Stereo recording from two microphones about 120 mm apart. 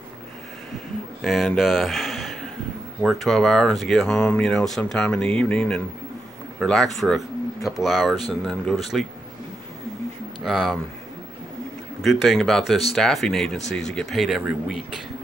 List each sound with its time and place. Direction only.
1.2 s a man's voice: centre (ahead or behind)
10.4 s speech: centre (ahead or behind)
12.0 s speech: centre (ahead or behind)